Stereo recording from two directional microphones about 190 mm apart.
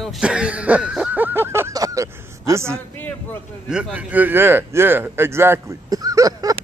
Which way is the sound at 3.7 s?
5° right (ahead or behind).